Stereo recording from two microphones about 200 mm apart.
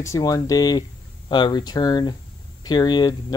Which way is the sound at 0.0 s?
15° left (ahead or behind).